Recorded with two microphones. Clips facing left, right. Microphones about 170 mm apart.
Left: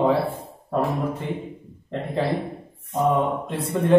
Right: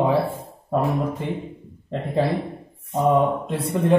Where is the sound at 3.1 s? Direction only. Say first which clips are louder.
Right 4 dB; 15° right (ahead or behind).